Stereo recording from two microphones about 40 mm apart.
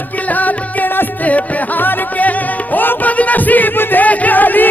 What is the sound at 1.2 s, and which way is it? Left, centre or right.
Music, left.